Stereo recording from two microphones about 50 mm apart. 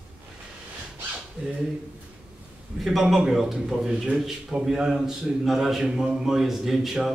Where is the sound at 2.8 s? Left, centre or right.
Centre.